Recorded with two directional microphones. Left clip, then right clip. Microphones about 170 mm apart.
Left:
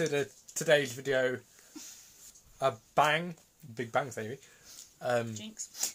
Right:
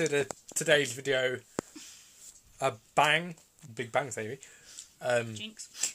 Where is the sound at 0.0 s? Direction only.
25° right (ahead or behind).